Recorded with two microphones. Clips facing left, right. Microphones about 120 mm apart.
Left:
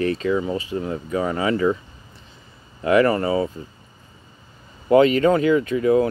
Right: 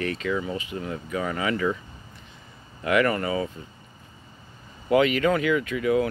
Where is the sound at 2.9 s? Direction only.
30° left (ahead or behind).